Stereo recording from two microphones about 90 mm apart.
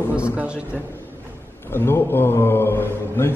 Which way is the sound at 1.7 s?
25° left (ahead or behind).